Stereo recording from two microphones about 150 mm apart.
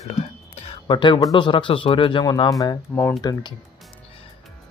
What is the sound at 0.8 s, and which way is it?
Speech, 30° left (ahead or behind).